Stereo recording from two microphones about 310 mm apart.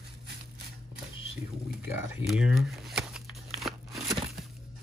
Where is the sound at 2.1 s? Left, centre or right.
Centre.